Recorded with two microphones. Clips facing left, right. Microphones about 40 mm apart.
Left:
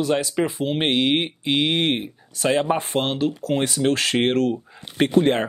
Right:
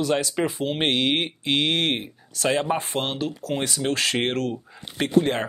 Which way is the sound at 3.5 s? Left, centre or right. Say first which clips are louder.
Left 4 dB; centre.